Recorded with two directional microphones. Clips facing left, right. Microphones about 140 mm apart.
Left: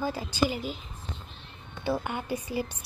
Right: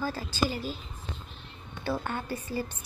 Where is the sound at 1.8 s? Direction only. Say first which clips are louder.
Left 2 dB; 15° left (ahead or behind).